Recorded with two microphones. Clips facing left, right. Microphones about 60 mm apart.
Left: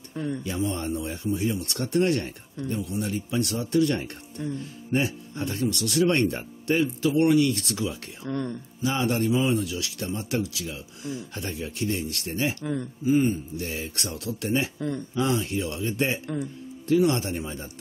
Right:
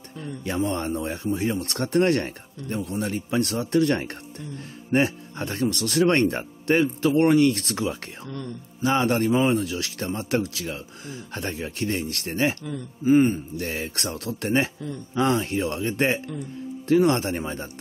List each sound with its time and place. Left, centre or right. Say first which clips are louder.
0.1 s a man's voice: left 6 dB; left
0.4 s speech: right 3 dB; right
8.3 s speech: left 6 dB; left
8.8 s speech: right 4 dB; right